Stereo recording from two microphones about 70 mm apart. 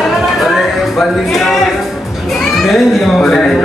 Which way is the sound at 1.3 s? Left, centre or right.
Centre.